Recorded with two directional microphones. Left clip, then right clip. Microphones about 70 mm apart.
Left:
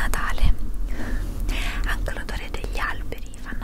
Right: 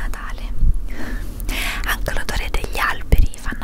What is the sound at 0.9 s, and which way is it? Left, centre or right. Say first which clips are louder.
Whispering: right 2 dB; right.